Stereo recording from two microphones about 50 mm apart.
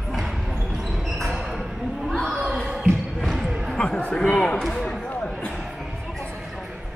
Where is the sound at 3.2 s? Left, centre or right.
Centre.